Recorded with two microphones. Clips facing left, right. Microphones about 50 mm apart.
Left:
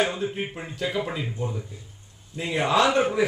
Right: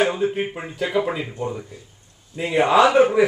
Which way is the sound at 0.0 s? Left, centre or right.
Centre.